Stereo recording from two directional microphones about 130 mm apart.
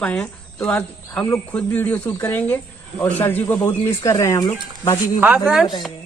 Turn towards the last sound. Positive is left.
turn(degrees=-10)  # may be behind; listen again after turning